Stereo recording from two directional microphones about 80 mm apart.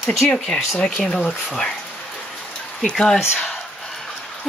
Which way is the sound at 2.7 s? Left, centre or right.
Centre.